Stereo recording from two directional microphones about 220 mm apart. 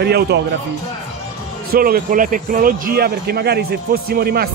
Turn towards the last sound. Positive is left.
turn(degrees=-45)  # may be behind; listen again after turning